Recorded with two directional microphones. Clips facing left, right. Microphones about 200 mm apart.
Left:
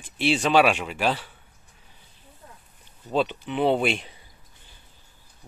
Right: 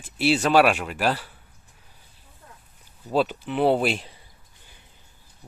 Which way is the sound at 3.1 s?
5° right (ahead or behind).